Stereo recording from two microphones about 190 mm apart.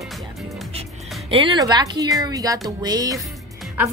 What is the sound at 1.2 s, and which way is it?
Speech, 25° right (ahead or behind).